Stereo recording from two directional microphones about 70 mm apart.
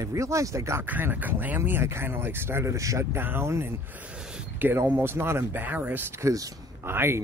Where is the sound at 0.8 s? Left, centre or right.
Right.